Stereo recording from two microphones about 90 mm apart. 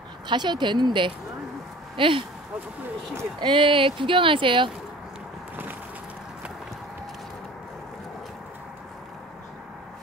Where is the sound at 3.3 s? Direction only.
65° right (ahead or behind).